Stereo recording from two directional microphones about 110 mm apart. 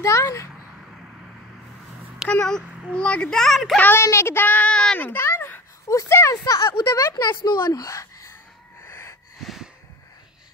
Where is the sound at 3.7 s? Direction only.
20° left (ahead or behind).